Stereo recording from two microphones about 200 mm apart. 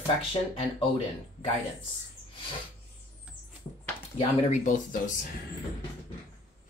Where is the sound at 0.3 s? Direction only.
30° left (ahead or behind).